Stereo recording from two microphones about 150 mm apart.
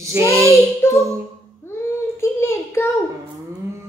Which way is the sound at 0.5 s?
20° left (ahead or behind).